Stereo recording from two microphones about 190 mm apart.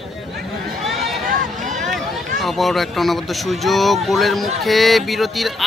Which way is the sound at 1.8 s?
Centre (ahead or behind).